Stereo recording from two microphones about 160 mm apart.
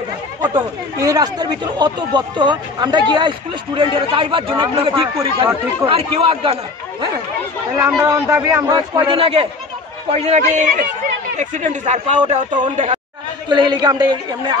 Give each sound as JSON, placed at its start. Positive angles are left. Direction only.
{"t": 0.4, "sound": "speech", "side_deg": -25}
{"t": 8.0, "sound": "speech", "side_deg": -20}
{"t": 13.5, "sound": "speech", "side_deg": -30}